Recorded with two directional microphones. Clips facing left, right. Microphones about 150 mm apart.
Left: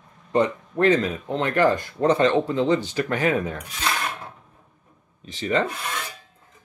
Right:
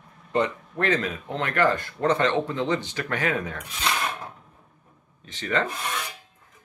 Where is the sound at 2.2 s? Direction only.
30° left (ahead or behind).